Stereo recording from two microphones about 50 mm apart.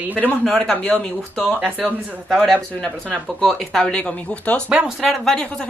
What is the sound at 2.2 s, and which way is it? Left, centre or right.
Speech, centre.